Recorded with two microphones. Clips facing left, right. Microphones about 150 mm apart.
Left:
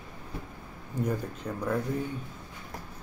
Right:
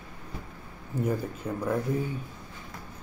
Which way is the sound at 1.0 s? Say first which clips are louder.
Right 2 dB; 5° right (ahead or behind).